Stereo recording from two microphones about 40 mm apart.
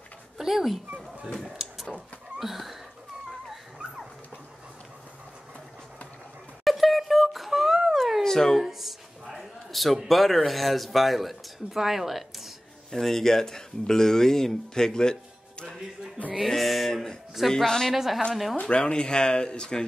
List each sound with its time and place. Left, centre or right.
0.4 s speech: centre
2.4 s a sound: centre
6.6 s a sound: centre
7.9 s cat: centre
8.2 s cat: centre
8.6 s a sound: centre
10.0 s speech: centre
12.9 s speech: centre
16.3 s speech: centre
17.9 s speech: centre
18.6 s speech: left